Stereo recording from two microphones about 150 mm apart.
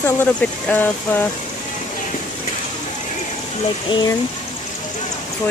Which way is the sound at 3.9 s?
30° left (ahead or behind).